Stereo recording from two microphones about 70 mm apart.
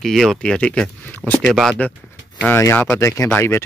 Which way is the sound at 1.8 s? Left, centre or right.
Left.